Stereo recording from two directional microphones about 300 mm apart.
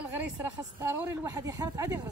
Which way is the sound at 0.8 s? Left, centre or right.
Centre.